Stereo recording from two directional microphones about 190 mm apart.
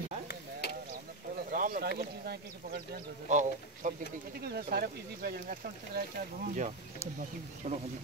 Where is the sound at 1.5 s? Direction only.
45° right (ahead or behind).